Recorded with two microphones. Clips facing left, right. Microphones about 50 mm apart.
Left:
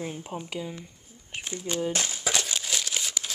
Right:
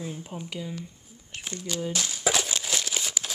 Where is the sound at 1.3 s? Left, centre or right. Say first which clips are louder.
Left 2 dB; centre.